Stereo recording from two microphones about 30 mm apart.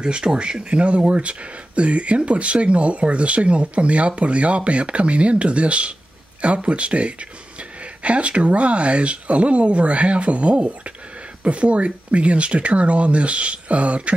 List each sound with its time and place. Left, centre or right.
0.0 s speech: right